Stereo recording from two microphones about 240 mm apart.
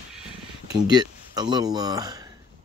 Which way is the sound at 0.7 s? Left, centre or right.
Centre.